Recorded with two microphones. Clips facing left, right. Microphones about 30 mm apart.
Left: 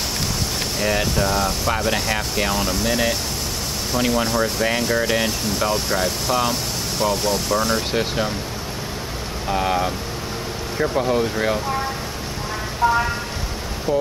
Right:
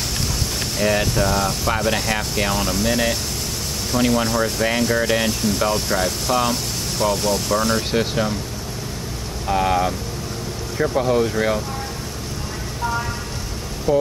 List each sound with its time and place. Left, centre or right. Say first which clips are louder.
0.7 s speech: right 2 dB; centre
9.5 s speech: right 2 dB; centre
12.8 s speech: left 6 dB; left
13.9 s speech: right 3 dB; centre